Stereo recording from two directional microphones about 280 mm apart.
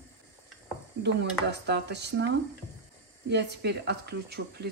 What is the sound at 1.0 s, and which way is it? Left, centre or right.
Speech, right.